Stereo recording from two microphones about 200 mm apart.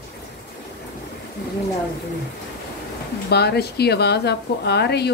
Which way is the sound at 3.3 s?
55° left (ahead or behind).